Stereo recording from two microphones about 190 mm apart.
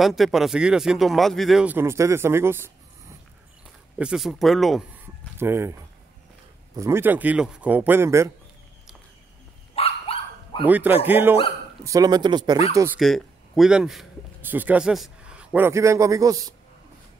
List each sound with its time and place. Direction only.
0.0 s speech: centre (ahead or behind)
4.0 s speech: 5° right (ahead or behind)
5.0 s a sound: 15° right (ahead or behind)
6.7 s speech: 15° right (ahead or behind)
9.8 s dog: 30° left (ahead or behind)
10.6 s speech: 10° right (ahead or behind)
13.0 s speech: centre (ahead or behind); by 16.5 s 20° right (ahead or behind)